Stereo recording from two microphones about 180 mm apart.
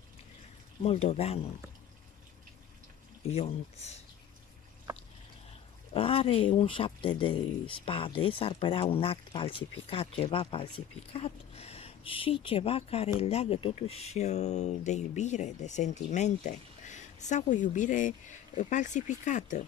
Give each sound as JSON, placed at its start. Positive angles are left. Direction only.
{"t": 0.8, "sound": "speech", "side_deg": 35}
{"t": 3.3, "sound": "speech", "side_deg": 35}
{"t": 5.9, "sound": "speech", "side_deg": 30}